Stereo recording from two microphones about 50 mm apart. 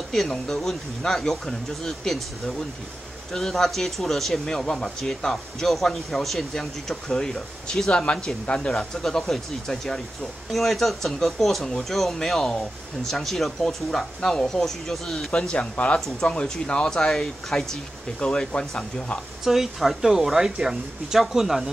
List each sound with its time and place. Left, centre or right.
0.1 s speech: centre
7.9 s speech: left
8.7 s speech: centre
15.3 s speech: centre
16.3 s speech: centre
19.4 s speech: centre